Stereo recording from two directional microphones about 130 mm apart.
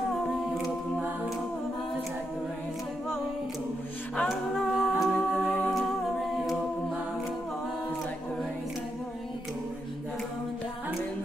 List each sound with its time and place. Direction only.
4.2 s a capella: centre (ahead or behind)